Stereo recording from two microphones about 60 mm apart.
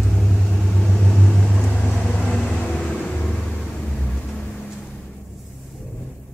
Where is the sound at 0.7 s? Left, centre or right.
Centre.